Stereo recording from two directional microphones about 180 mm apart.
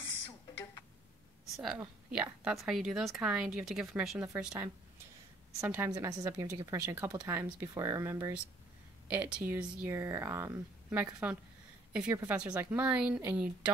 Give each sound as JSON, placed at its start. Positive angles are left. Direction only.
{"t": 1.4, "sound": "a sound", "side_deg": 0}
{"t": 2.0, "sound": "speech", "side_deg": -5}
{"t": 12.1, "sound": "speech", "side_deg": -15}